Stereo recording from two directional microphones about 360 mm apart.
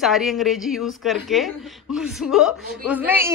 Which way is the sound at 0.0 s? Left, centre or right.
Centre.